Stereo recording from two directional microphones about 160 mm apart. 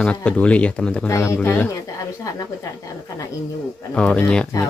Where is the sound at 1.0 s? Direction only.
15° left (ahead or behind).